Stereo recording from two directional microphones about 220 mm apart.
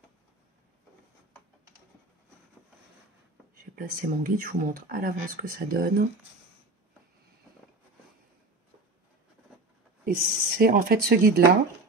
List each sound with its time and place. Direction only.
3.7 s speech: 40° right (ahead or behind)
10.0 s speech: 40° right (ahead or behind)